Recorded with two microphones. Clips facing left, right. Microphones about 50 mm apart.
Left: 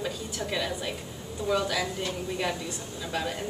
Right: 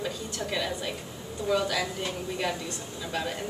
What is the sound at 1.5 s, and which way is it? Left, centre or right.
Speech, centre.